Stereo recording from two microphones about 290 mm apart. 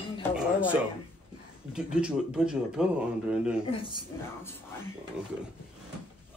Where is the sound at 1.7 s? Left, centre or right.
Centre.